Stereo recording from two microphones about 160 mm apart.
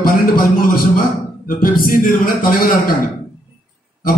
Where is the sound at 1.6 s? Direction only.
60° left (ahead or behind).